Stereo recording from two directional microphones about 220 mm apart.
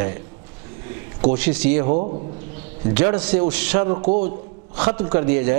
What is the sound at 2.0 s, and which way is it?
Speech, 30° right (ahead or behind).